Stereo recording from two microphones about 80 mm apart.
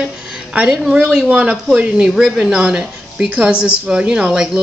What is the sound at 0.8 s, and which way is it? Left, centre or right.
Speech, centre.